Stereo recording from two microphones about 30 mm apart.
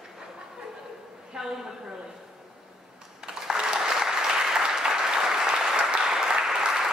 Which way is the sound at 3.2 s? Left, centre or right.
Centre.